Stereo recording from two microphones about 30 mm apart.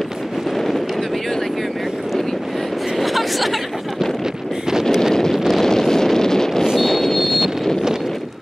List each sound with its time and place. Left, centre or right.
3.0 s a sound: centre
5.5 s wind noise: centre
6.8 s vehicle: centre
7.2 s vehicle: centre